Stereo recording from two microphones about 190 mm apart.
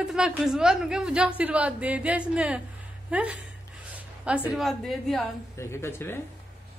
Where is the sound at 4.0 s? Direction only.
5° right (ahead or behind).